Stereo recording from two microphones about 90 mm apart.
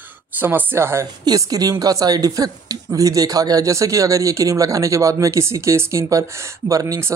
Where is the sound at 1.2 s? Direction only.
45° right (ahead or behind).